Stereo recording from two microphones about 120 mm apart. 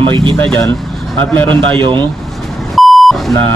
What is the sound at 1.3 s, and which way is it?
Speech, 15° left (ahead or behind).